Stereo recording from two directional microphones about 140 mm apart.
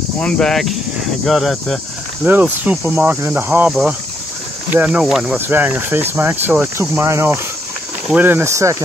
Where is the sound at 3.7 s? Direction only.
5° right (ahead or behind).